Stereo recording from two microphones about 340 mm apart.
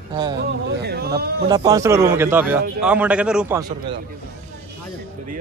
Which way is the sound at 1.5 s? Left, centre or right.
Centre.